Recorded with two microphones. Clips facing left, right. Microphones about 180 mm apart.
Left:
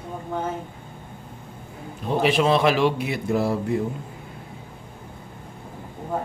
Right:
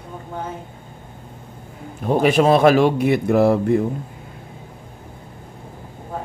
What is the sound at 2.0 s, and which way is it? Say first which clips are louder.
Speech: right 5 dB; 45° right (ahead or behind).